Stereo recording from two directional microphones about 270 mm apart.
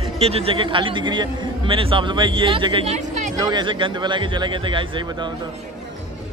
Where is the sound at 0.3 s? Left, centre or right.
Right.